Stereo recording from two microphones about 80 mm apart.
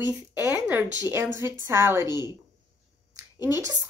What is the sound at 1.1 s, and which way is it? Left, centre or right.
Speech, right.